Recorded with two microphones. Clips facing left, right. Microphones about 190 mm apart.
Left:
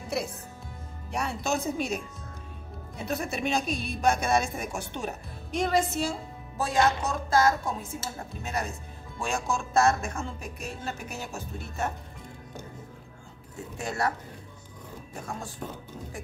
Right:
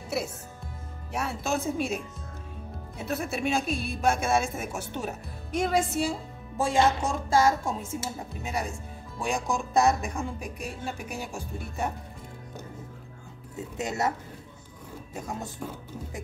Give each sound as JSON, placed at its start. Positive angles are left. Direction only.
{"t": 1.1, "sound": "speech", "side_deg": -5}
{"t": 6.6, "sound": "speech", "side_deg": -25}
{"t": 8.0, "sound": "speech", "side_deg": -10}
{"t": 13.7, "sound": "speech", "side_deg": -20}
{"t": 15.1, "sound": "speech", "side_deg": -20}